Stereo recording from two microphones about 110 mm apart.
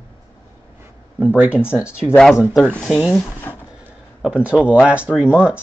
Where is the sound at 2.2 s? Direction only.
5° left (ahead or behind).